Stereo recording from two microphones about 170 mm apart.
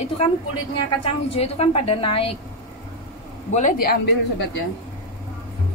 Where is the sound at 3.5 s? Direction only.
45° left (ahead or behind).